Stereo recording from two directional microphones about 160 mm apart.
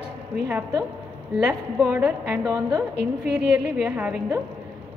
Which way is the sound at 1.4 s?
10° right (ahead or behind).